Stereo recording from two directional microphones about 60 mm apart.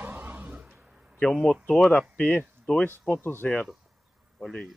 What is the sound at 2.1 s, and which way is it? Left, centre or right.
Speech, left.